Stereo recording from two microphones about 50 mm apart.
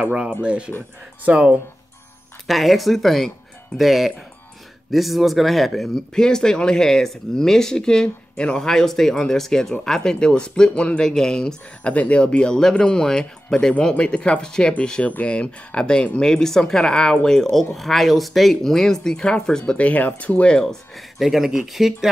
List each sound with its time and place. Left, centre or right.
0.0 s speech: centre
2.4 s speech: centre; by 11.0 s left
11.0 s speech: centre
11.9 s speech: left
17.7 s speech: centre
19.7 s speech: left
20.6 s speech: centre